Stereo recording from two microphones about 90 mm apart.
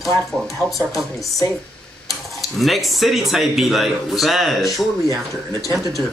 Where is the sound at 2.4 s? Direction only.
Centre (ahead or behind).